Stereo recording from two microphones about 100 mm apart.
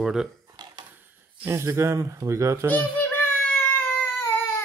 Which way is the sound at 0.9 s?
20° right (ahead or behind).